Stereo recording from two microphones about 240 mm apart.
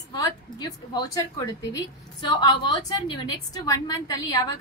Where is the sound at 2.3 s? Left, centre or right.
Centre.